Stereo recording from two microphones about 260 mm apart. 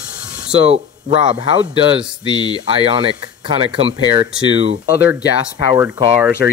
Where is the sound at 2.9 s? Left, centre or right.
Centre.